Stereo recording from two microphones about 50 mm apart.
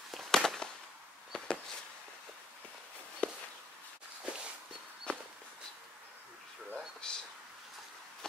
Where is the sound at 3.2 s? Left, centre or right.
Left.